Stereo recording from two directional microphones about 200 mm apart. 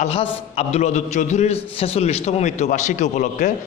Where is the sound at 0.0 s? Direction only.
30° left (ahead or behind).